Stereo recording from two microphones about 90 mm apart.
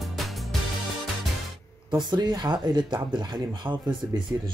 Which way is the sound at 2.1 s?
55° right (ahead or behind).